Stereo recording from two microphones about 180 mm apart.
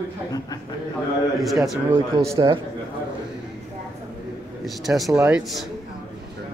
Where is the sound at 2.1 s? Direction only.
25° right (ahead or behind).